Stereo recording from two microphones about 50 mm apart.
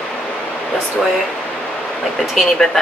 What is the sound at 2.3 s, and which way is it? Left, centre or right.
Speech, centre.